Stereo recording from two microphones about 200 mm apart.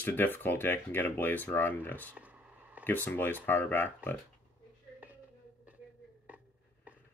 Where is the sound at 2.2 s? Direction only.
5° right (ahead or behind).